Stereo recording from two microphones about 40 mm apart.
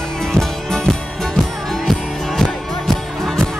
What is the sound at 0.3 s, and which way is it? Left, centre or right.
Music, centre.